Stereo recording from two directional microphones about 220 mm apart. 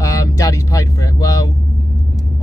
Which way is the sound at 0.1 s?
15° left (ahead or behind).